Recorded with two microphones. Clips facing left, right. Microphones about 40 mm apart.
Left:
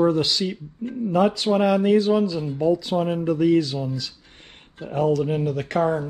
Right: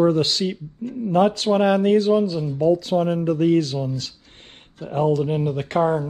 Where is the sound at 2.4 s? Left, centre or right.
Left.